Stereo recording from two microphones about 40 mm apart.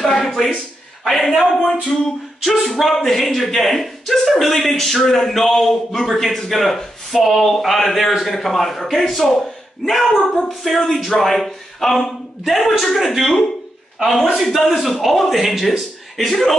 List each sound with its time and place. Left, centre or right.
0.0 s a sound: centre
1.0 s a man's voice: centre
2.4 s a man's voice: centre
14.4 s a man's voice: centre